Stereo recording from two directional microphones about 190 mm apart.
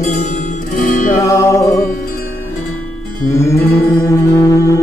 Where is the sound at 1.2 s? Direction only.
15° left (ahead or behind).